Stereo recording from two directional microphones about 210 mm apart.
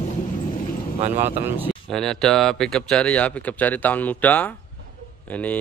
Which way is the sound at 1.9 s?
Centre (ahead or behind).